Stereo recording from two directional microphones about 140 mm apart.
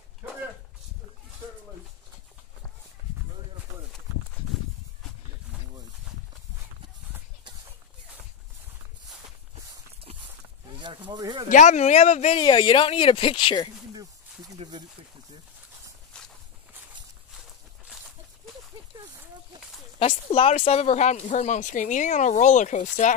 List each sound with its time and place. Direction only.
11.1 s speech: 30° right (ahead or behind)
11.4 s speech: 60° left (ahead or behind)
12.4 s speech: 35° left (ahead or behind)
14.6 s a sound: 45° right (ahead or behind)
16.1 s walk: 5° left (ahead or behind)
17.8 s a sound: 5° right (ahead or behind)
20.0 s speech: 45° left (ahead or behind); by 23.1 s 60° left (ahead or behind)